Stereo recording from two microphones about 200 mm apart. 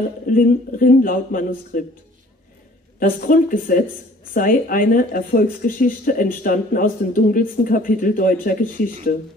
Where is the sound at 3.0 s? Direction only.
45° left (ahead or behind).